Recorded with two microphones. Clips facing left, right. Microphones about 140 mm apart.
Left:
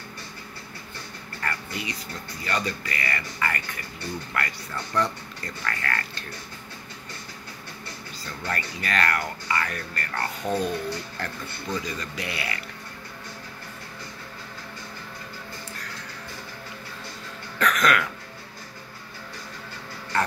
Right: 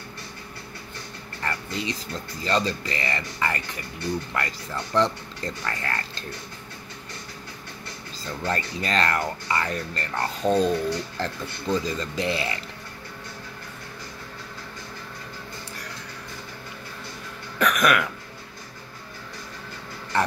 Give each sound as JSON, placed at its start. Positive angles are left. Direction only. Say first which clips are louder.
{"t": 1.4, "sound": "speech", "louder": "right 3 dB", "side_deg": -25}
{"t": 8.5, "sound": "speech", "louder": "right 3 dB", "side_deg": -25}
{"t": 17.6, "sound": "cough", "louder": "right 1 dB", "side_deg": -15}